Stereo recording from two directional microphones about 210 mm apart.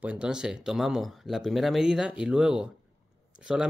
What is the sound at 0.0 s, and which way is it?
Speech, 5° right (ahead or behind).